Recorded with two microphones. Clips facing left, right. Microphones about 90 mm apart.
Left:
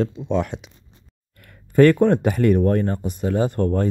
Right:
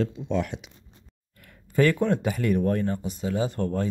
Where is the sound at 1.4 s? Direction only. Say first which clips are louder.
Left 8 dB; 60° left (ahead or behind).